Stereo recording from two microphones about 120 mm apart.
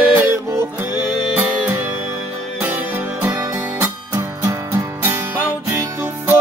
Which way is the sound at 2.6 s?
15° right (ahead or behind).